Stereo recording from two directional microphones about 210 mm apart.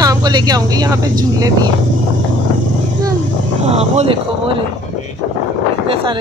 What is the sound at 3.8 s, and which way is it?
Speech, 30° right (ahead or behind).